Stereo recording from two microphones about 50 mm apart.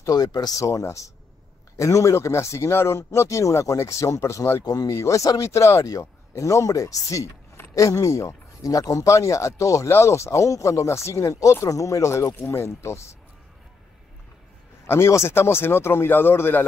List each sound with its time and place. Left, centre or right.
0.6 s speech: left
8.8 s speech: left
14.9 s speech: left